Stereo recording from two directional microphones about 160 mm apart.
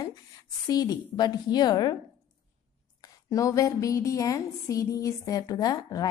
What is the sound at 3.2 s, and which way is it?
A woman's voice, 20° left (ahead or behind).